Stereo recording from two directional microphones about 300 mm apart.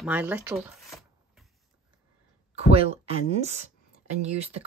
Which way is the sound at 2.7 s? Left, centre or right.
Centre.